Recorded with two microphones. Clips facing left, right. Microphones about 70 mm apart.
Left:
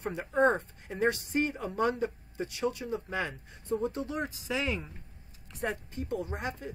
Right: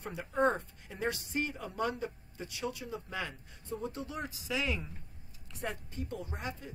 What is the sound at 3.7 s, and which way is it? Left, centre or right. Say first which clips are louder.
Speech: left 8 dB; left.